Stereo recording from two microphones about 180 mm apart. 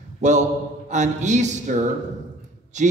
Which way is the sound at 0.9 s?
40° right (ahead or behind).